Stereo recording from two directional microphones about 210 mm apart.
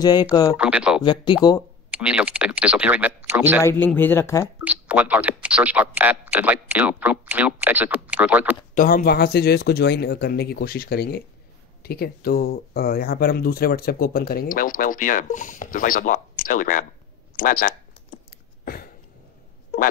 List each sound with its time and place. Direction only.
0.0 s speech: 20° left (ahead or behind)
0.6 s speech: 5° right (ahead or behind)
1.0 s speech: 20° left (ahead or behind)
1.9 s speech: 5° right (ahead or behind)
3.6 s speech: 10° left (ahead or behind)
4.6 s speech: 5° right (ahead or behind)
8.7 s speech: 45° left (ahead or behind)
17.4 s typing: 45° left (ahead or behind)